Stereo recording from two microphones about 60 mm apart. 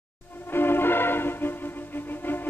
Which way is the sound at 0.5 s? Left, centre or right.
Left.